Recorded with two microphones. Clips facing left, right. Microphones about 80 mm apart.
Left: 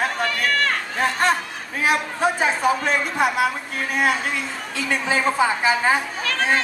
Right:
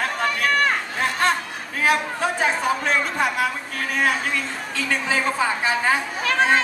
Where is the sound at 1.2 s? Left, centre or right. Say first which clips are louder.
Left 1 dB; centre.